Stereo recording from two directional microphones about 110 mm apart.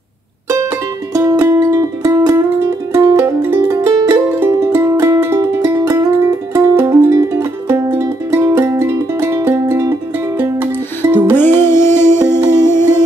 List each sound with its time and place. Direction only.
1.1 s music: 30° right (ahead or behind)
3.4 s music: 20° right (ahead or behind)
11.3 s music: 20° left (ahead or behind)
12.7 s music: 40° right (ahead or behind)